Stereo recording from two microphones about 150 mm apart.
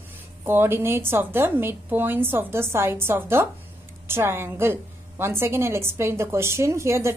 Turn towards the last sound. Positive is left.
turn(degrees=-20)  # may be behind; listen again after turning